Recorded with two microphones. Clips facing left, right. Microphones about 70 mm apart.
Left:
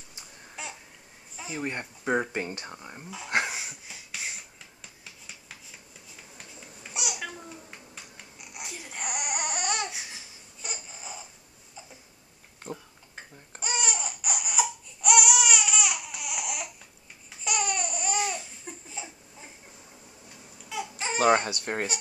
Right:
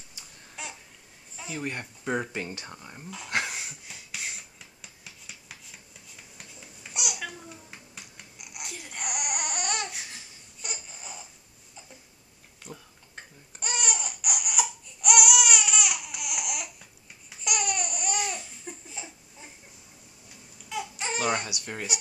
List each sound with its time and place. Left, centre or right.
0.6 s caw: centre
1.3 s speech: centre; by 2.6 s left
2.6 s speech: centre
3.4 s a sound: centre
6.3 s babbling: centre
12.6 s oink: left
13.1 s laughter: centre
20.6 s baby cry: centre
21.2 s speech: left